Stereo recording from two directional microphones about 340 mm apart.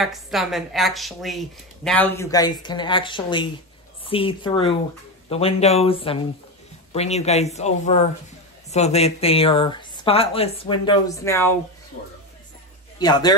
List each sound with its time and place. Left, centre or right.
0.0 s a woman's voice: centre
13.0 s speech: centre